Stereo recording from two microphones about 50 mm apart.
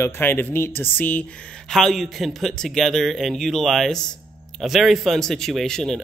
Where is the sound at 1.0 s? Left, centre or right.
Left.